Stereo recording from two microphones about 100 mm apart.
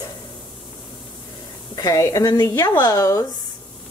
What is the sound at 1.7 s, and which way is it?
Speech, 35° left (ahead or behind).